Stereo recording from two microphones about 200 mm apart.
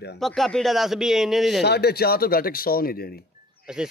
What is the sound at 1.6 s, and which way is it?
Speech, 55° left (ahead or behind).